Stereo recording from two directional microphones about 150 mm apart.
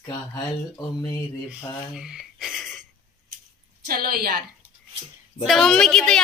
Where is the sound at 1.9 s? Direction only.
5° right (ahead or behind).